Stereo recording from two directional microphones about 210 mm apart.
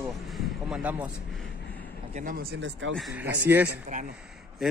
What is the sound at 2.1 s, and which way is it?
Speech, 40° right (ahead or behind).